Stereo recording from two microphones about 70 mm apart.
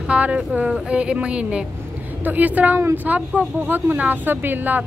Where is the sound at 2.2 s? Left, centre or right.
Right.